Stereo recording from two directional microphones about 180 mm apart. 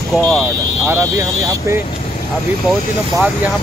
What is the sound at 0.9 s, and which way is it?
Speech, 15° right (ahead or behind).